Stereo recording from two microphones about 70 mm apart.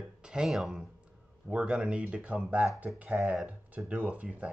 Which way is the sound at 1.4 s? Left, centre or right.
Centre.